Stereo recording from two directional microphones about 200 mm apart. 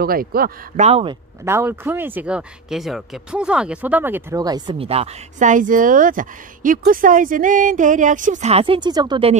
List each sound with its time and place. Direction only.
0.0 s a man's voice: 45° right (ahead or behind)
0.8 s speech: 30° right (ahead or behind)
1.4 s speech: 10° right (ahead or behind)